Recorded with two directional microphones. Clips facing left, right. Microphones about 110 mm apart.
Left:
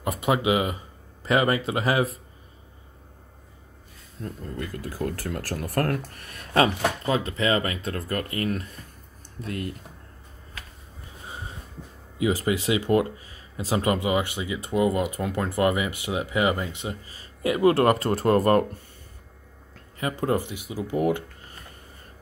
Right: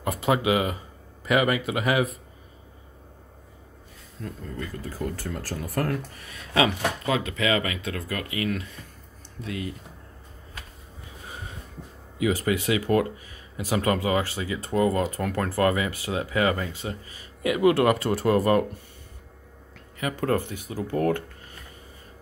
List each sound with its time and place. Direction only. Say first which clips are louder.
0.0 s speech: even; 25° left (ahead or behind)
4.8 s speech: left 2 dB; 65° left (ahead or behind); by 6.9 s 45° left (ahead or behind)
7.1 s speech: even; 35° left (ahead or behind); by 9.8 s 50° left (ahead or behind)
11.2 s a sound: left 2 dB; 25° left (ahead or behind)
12.2 s speech: even; 25° left (ahead or behind)
17.1 s speech: left 1 dB; 35° left (ahead or behind)
20.0 s speech: even; 25° left (ahead or behind)